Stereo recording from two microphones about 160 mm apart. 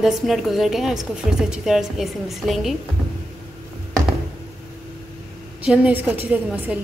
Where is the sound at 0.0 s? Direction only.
Centre (ahead or behind).